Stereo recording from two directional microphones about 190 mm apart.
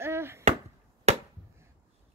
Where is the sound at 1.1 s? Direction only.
35° right (ahead or behind).